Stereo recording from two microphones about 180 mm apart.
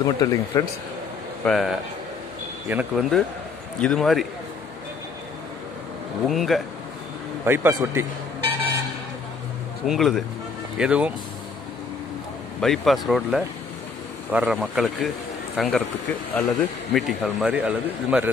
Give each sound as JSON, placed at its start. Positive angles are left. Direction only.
{"t": 0.0, "sound": "speech", "side_deg": 20}
{"t": 1.4, "sound": "speech", "side_deg": 0}
{"t": 3.8, "sound": "speech", "side_deg": 5}
{"t": 6.2, "sound": "speech", "side_deg": 0}
{"t": 7.4, "sound": "speech", "side_deg": -10}
{"t": 9.8, "sound": "speech", "side_deg": 0}
{"t": 12.5, "sound": "speech", "side_deg": 0}